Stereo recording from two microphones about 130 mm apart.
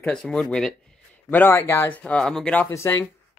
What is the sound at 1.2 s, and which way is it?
Speech, 15° left (ahead or behind).